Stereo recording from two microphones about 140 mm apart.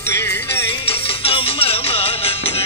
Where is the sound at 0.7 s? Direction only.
40° left (ahead or behind).